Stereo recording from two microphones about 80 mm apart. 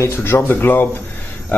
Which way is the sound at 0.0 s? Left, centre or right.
Left.